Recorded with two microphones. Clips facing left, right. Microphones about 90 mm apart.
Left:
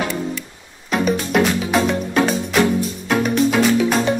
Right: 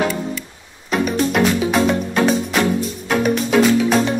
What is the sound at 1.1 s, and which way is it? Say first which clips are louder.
Music: right 4 dB; centre (ahead or behind).